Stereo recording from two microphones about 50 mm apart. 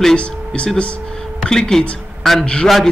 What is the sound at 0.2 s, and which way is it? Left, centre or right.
A man's voice, left.